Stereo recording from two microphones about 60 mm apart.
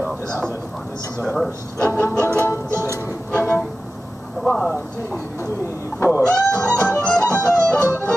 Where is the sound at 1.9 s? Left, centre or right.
Right.